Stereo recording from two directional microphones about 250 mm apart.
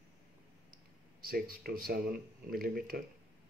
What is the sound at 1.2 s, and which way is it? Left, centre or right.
Speech, right.